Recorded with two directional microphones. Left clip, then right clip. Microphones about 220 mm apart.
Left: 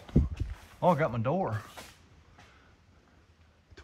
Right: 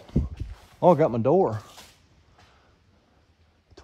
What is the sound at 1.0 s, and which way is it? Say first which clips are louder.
Speech: right 9 dB; 25° right (ahead or behind).